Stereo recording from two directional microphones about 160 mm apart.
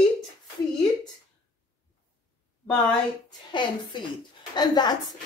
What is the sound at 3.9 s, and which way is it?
Speech, 30° left (ahead or behind).